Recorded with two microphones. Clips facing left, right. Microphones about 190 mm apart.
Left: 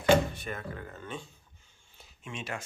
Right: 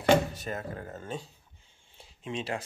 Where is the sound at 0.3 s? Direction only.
40° right (ahead or behind).